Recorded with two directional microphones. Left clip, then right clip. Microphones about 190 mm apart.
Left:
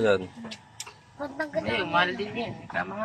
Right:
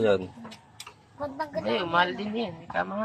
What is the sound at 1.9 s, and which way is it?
Speech, 65° right (ahead or behind).